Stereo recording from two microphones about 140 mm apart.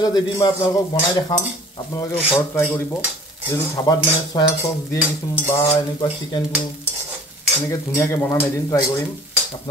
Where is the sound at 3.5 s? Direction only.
25° left (ahead or behind).